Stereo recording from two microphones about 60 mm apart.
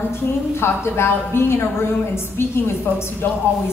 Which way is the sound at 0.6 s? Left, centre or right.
Left.